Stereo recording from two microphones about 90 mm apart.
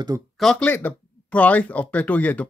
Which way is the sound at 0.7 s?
20° left (ahead or behind).